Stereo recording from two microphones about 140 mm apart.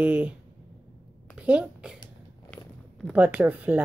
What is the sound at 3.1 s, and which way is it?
Speech, 10° right (ahead or behind).